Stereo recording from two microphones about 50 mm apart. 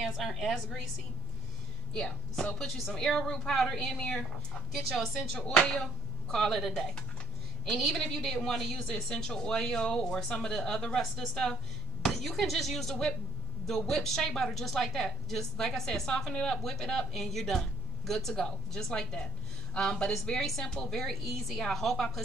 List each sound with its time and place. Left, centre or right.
0.0 s speech: centre
2.0 s a woman's voice: centre
5.3 s music: centre
6.3 s a woman's voice: centre
7.9 s a woman's voice: centre